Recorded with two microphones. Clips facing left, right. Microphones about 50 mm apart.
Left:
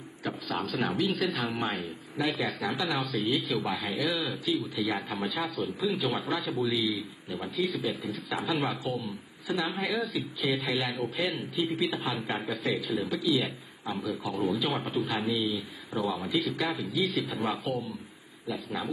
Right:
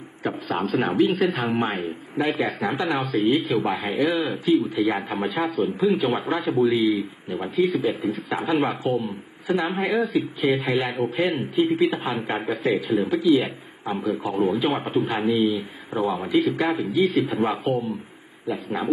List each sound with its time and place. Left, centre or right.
0.2 s a man's voice: right